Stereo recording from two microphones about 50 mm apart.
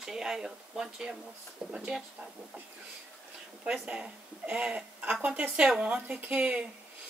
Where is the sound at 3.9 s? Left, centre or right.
Right.